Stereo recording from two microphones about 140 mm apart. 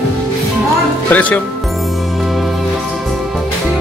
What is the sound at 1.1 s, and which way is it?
Music, 10° left (ahead or behind).